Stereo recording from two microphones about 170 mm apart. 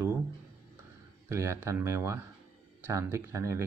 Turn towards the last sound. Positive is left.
turn(degrees=-15)  # may be behind; listen again after turning